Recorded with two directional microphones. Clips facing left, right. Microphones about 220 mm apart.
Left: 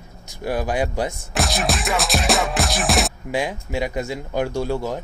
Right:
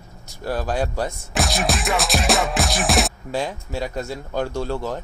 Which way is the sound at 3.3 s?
15° left (ahead or behind).